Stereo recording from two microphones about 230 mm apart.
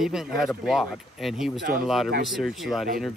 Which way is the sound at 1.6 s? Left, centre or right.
Right.